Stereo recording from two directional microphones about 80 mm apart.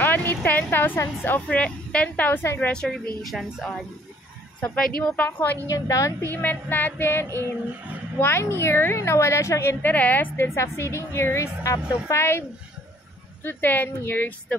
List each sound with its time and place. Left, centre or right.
0.0 s a woman's voice: left; by 3.4 s centre
4.7 s a woman's voice: centre
5.1 s speech: left
5.7 s a woman's voice: left
6.3 s a woman's voice: left